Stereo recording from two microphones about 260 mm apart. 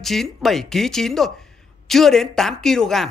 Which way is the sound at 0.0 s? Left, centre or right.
Centre.